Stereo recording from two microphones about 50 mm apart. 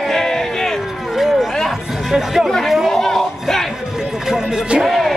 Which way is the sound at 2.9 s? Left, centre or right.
Centre.